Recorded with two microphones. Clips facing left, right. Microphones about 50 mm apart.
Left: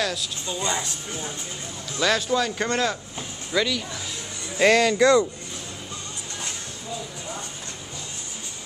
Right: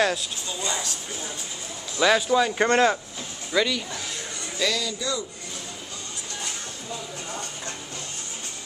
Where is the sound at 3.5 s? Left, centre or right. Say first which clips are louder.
Even; centre.